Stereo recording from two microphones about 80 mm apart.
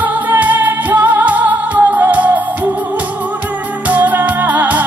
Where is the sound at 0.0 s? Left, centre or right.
Right.